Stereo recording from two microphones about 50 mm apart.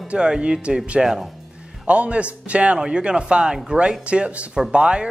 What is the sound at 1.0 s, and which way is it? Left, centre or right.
Speech, centre.